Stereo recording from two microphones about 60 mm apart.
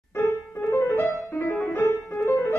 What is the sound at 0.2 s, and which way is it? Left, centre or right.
Music, left.